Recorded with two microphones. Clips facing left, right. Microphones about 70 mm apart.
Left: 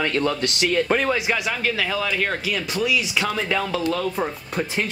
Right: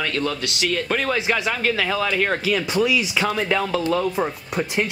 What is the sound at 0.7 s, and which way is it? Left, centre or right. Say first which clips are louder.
Speech: left 2 dB; centre.